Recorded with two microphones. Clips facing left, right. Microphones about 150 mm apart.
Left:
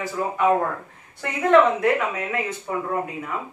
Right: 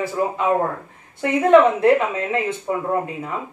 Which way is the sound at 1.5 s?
25° right (ahead or behind).